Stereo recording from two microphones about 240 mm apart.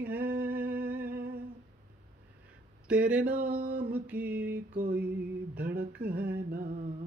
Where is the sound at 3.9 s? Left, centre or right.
Centre.